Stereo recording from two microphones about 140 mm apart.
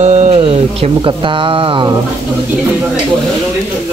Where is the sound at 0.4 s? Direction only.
45° right (ahead or behind).